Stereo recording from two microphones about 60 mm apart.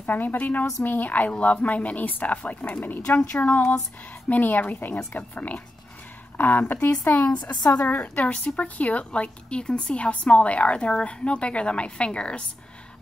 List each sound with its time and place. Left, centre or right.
0.0 s a woman's voice: left